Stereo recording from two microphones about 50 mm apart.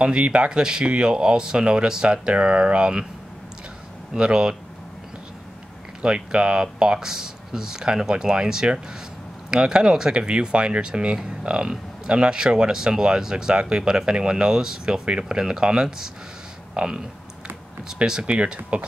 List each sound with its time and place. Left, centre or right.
0.0 s speech: right
4.1 s speech: centre
6.0 s speech: centre